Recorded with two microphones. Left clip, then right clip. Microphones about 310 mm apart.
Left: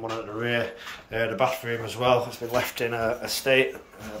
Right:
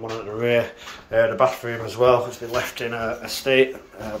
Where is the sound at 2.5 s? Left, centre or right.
Centre.